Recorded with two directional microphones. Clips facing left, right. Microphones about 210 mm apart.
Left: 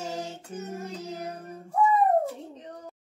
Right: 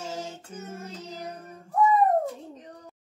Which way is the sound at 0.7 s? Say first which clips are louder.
Left 3 dB; 10° left (ahead or behind).